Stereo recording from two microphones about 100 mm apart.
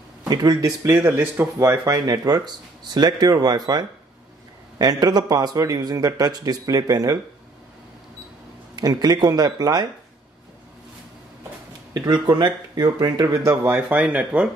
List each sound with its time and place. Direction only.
0.3 s a man's voice: 40° right (ahead or behind)
1.0 s speech: 20° right (ahead or behind)
1.6 s a man's voice: 30° right (ahead or behind)
8.7 s speech: 40° right (ahead or behind)
11.9 s a man's voice: 40° right (ahead or behind); by 14.5 s 10° right (ahead or behind)